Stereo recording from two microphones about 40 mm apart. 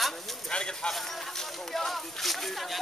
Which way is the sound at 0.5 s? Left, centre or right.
Left.